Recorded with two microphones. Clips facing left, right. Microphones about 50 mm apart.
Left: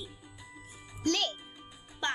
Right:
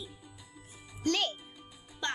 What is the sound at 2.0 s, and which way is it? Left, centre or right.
Music, left.